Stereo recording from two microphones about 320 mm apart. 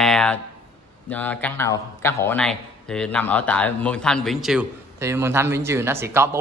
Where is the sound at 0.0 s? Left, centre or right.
Centre.